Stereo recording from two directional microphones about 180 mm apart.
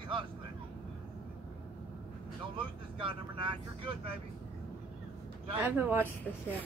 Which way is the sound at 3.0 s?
30° right (ahead or behind).